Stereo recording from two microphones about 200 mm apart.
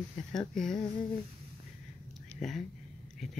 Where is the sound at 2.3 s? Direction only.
35° left (ahead or behind).